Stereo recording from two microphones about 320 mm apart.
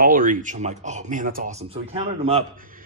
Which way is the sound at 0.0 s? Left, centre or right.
Right.